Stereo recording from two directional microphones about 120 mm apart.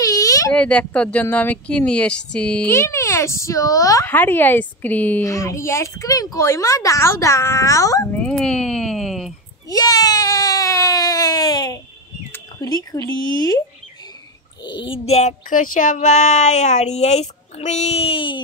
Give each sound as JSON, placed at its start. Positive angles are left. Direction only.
{"t": 0.0, "sound": "baby cry", "side_deg": 30}
{"t": 0.5, "sound": "speech", "side_deg": 10}
{"t": 2.7, "sound": "speech", "side_deg": 20}
{"t": 4.0, "sound": "speech", "side_deg": 15}
{"t": 5.2, "sound": "speech", "side_deg": 25}
{"t": 8.1, "sound": "speech", "side_deg": 10}
{"t": 8.4, "sound": "a sound", "side_deg": 5}
{"t": 9.7, "sound": "baby cry", "side_deg": 30}
{"t": 13.2, "sound": "speech", "side_deg": 35}
{"t": 14.6, "sound": "a sound", "side_deg": 40}
{"t": 15.0, "sound": "speech", "side_deg": 70}